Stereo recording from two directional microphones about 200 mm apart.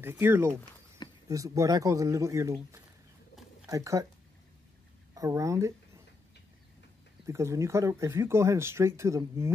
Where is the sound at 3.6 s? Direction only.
15° right (ahead or behind).